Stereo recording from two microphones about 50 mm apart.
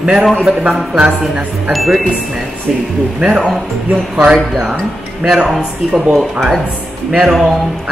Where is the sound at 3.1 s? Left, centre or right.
Centre.